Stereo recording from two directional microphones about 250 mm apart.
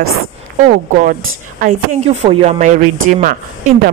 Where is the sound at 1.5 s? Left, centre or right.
Right.